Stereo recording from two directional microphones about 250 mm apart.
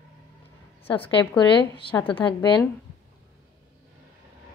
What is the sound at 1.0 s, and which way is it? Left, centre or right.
A woman's voice, left.